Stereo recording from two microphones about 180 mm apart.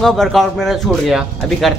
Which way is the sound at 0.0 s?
Centre (ahead or behind).